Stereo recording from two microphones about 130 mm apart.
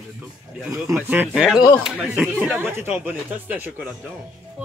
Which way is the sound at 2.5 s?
15° right (ahead or behind).